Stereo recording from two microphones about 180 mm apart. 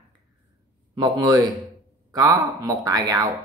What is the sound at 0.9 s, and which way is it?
Speech, 25° right (ahead or behind).